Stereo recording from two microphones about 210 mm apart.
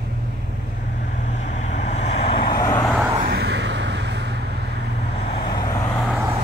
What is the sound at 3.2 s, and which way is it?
Vehicle, 50° right (ahead or behind).